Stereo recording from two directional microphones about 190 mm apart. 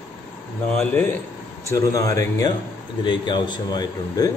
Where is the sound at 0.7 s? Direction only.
5° left (ahead or behind).